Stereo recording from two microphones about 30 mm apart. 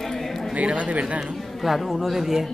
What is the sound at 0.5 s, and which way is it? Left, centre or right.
Speech, right.